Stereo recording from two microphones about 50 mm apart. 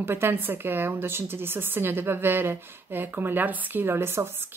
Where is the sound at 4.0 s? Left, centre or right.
Right.